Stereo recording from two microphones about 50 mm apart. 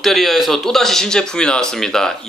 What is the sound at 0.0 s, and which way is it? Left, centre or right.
Speech, centre.